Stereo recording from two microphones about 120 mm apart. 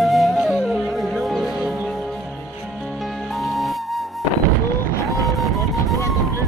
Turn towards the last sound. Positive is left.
turn(degrees=0)  # may be behind; listen again after turning